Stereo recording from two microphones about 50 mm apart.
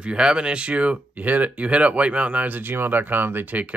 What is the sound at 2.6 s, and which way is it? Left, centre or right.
Speech, right.